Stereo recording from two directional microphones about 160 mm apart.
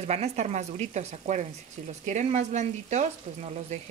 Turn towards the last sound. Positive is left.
turn(degrees=-45)  # may be behind; listen again after turning